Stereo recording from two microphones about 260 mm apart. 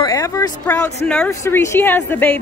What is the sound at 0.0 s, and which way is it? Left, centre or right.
A woman's voice, centre.